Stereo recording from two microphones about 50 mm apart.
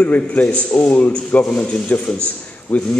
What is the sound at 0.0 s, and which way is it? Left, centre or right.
A man's voice, left.